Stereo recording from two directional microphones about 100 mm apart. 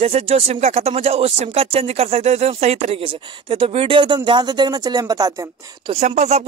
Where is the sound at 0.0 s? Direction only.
90° right; by 5.5 s 35° right (ahead or behind).